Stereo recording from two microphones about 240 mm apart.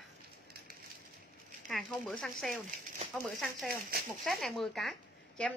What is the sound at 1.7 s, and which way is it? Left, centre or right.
A woman's voice, centre.